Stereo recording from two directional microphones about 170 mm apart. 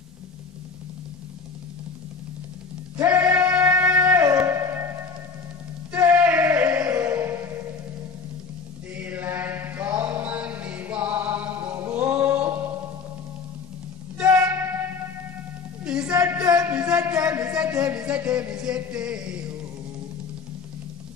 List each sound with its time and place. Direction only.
3.0 s music: 20° right (ahead or behind)
5.9 s music: 15° right (ahead or behind)
8.9 s mantra: 10° right (ahead or behind)
14.1 s music: 10° right (ahead or behind)
16.1 s music: 20° right (ahead or behind)
16.6 s music: 5° right (ahead or behind)